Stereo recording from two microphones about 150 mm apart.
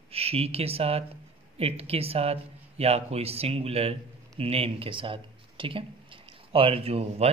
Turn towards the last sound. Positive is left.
turn(degrees=-40)  # may be behind; listen again after turning